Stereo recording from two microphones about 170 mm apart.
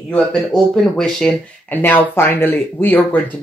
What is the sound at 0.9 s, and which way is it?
Speech, 5° left (ahead or behind).